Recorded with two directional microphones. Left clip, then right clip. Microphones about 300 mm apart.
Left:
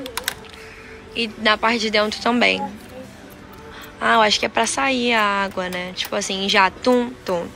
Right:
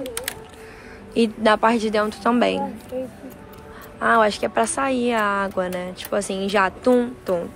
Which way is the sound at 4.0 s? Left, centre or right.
Centre.